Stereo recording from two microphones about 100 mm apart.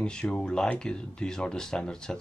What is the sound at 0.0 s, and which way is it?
Speech, 10° left (ahead or behind).